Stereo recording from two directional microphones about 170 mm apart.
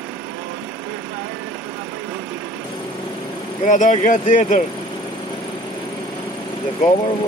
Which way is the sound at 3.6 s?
50° left (ahead or behind).